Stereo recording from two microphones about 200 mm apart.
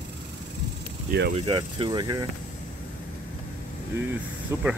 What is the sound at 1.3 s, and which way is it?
Speech, 25° right (ahead or behind).